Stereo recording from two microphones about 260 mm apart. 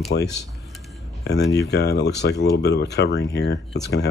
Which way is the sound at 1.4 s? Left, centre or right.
Left.